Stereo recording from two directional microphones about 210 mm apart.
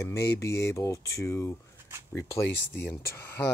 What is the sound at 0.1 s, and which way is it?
Speech, 50° left (ahead or behind).